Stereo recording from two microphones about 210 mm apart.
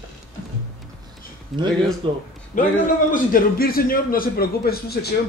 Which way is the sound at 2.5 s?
40° left (ahead or behind).